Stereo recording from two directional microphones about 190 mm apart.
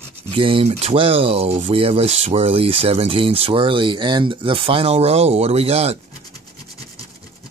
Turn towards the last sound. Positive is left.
turn(degrees=-30)  # may be behind; listen again after turning